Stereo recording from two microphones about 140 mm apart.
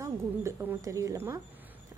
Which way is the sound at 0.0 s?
20° right (ahead or behind).